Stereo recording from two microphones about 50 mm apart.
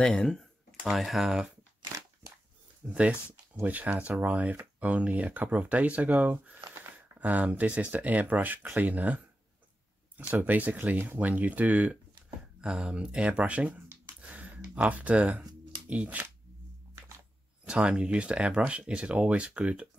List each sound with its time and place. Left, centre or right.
0.0 s speech: centre
0.9 s speech: centre
2.8 s speech: centre
3.6 s speech: right
12.6 s speech: centre
14.2 s a sound: right
15.9 s speech: right
17.6 s speech: centre